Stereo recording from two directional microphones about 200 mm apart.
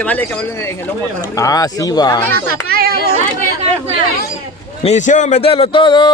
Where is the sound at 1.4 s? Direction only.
15° left (ahead or behind).